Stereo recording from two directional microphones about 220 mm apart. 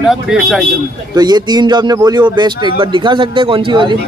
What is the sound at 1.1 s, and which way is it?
A man's voice, 20° right (ahead or behind).